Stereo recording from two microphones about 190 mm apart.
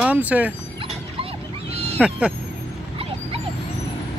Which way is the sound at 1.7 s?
35° right (ahead or behind).